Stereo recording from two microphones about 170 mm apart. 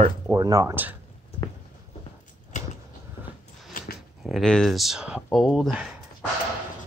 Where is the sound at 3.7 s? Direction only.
55° left (ahead or behind).